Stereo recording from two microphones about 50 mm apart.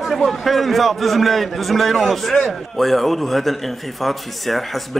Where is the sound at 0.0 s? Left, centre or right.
Centre.